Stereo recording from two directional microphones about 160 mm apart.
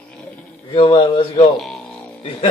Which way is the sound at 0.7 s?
30° left (ahead or behind).